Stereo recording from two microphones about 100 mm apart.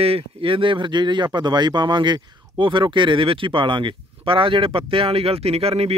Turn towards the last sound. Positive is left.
turn(degrees=-85)